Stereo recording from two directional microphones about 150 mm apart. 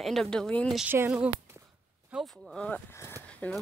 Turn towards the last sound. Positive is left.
turn(degrees=10)  # may be behind; listen again after turning